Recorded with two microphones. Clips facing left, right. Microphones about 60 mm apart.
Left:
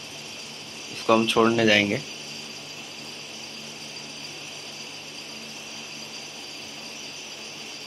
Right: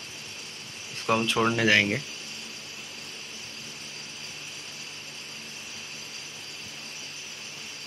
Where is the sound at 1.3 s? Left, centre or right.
Centre.